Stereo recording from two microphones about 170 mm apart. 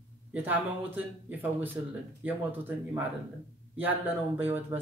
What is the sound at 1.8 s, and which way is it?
Speech, 20° right (ahead or behind).